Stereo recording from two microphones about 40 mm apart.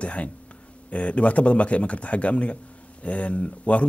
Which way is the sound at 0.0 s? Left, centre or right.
Left.